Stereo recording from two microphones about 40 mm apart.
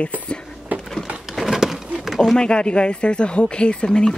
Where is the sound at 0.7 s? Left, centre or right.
Right.